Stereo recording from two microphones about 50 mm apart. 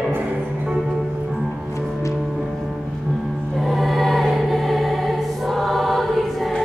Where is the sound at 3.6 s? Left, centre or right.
Centre.